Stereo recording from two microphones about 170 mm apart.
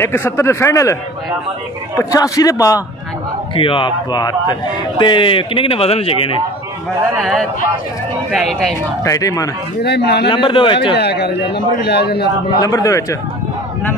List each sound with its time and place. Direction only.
0.0 s speech: 15° left (ahead or behind)
2.0 s a man's voice: 20° left (ahead or behind)
3.5 s speech: 30° left (ahead or behind)
7.2 s speech: centre (ahead or behind)
9.0 s a man's voice: 20° left (ahead or behind)
9.8 s a man's voice: 75° left (ahead or behind)
10.2 s a man's voice: 30° left (ahead or behind)
11.0 s a man's voice: 75° left (ahead or behind)
12.6 s a man's voice: 20° left (ahead or behind)